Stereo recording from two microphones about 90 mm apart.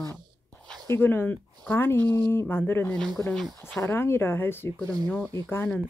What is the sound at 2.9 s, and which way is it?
Speech, 5° left (ahead or behind).